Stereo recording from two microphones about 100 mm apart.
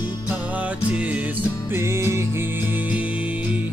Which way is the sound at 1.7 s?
25° right (ahead or behind).